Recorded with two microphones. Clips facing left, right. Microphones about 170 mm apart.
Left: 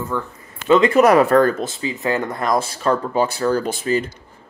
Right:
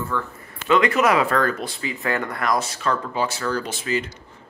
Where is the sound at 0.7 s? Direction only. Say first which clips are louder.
Left 5 dB; 30° left (ahead or behind).